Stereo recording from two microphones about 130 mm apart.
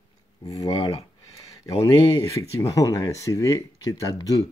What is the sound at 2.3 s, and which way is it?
Speech, 25° left (ahead or behind).